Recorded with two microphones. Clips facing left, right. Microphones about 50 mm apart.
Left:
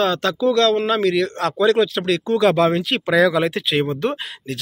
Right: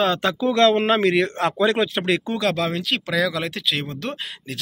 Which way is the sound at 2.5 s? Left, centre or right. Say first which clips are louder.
Left 6 dB; centre.